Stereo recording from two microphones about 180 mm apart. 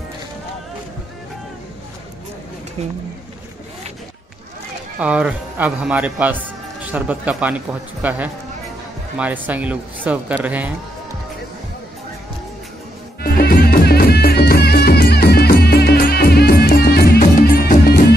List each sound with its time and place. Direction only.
5.0 s a man's voice: 5° right (ahead or behind)
13.2 s music: 55° left (ahead or behind)